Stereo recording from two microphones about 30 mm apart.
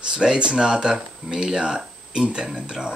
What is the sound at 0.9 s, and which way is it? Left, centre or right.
Speech, centre.